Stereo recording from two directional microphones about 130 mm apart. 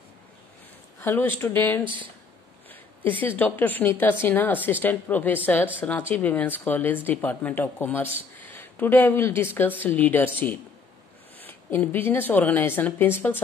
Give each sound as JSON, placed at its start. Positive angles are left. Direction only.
{"t": 1.0, "sound": "speech", "side_deg": 15}